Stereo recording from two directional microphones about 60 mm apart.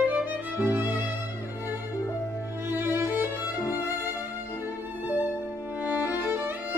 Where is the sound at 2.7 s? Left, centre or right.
Right.